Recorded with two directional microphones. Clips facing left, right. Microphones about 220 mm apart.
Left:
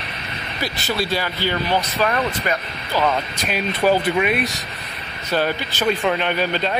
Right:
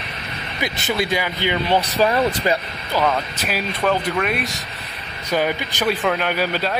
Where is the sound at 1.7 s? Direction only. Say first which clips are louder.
Right 5 dB; 30° right (ahead or behind).